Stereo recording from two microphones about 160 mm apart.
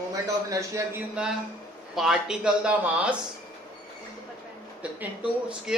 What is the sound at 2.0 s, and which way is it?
Speech, 5° right (ahead or behind).